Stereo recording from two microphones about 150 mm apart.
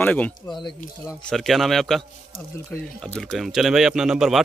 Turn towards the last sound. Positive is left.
turn(degrees=0)  # may be behind; listen again after turning